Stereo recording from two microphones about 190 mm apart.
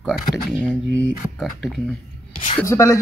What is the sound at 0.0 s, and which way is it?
Speech, centre (ahead or behind).